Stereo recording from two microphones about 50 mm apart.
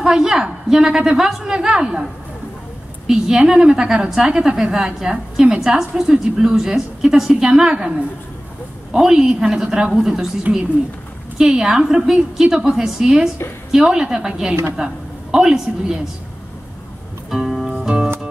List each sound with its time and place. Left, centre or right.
0.0 s a woman's voice: centre
3.1 s a woman's voice: centre
8.9 s a woman's voice: centre
10.5 s a woman's voice: right
11.3 s a woman's voice: centre
17.3 s music: centre
17.6 s music: centre